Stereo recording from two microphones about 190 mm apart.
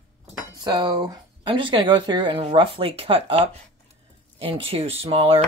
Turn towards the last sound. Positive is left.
turn(degrees=-30)  # may be behind; listen again after turning